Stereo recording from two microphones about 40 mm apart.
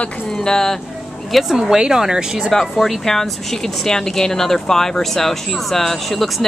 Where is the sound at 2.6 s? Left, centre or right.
Centre.